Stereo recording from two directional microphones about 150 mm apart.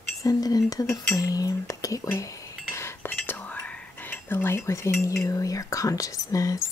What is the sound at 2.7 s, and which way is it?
Whispering, 15° left (ahead or behind).